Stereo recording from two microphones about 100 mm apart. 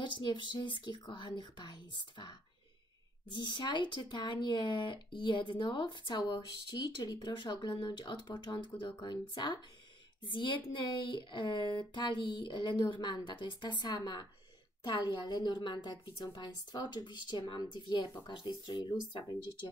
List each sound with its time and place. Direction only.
0.0 s speech: 50° left (ahead or behind)